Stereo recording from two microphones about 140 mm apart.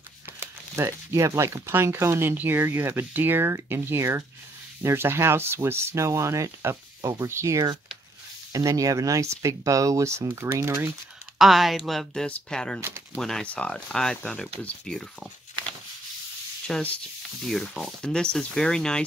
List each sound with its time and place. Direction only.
0.4 s speech: 20° right (ahead or behind)
11.3 s speech: centre (ahead or behind)
16.6 s speech: 5° left (ahead or behind)